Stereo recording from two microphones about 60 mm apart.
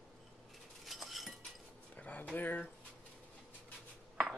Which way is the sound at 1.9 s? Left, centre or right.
Left.